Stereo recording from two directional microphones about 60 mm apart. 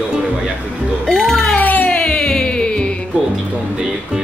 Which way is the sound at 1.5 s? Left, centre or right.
Left.